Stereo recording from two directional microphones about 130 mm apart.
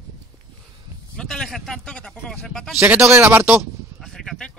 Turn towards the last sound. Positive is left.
turn(degrees=5)  # may be behind; listen again after turning